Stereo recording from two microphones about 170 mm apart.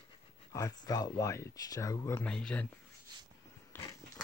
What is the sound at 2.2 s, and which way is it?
Speech, 5° left (ahead or behind).